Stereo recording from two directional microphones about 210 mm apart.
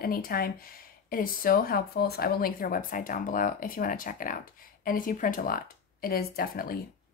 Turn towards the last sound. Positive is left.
turn(degrees=45)  # may be behind; listen again after turning